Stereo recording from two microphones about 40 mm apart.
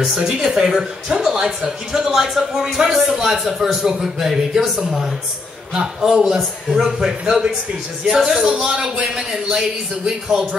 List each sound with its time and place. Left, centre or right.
0.0 s speech: centre
6.0 s speech: centre
8.6 s a man's voice: centre